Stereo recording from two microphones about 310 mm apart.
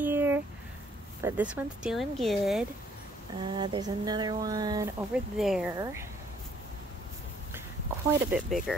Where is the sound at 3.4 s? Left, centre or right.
Centre.